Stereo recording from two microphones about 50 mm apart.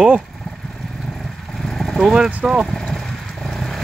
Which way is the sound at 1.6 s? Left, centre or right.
Centre.